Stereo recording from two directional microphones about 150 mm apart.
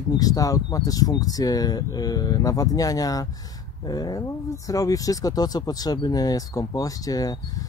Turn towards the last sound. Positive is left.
turn(degrees=25)  # may be behind; listen again after turning